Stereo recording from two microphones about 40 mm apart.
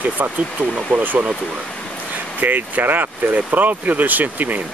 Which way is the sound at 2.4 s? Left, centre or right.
Right.